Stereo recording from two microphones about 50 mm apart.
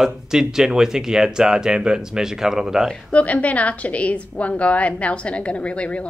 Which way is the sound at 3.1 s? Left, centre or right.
Left.